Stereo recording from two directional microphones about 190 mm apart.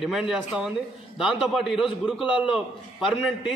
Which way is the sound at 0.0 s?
Centre (ahead or behind).